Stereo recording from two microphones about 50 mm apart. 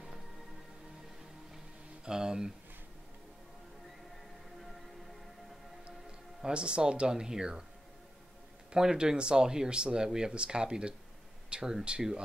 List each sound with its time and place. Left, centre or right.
2.0 s speech: centre
6.4 s speech: centre
8.7 s speech: centre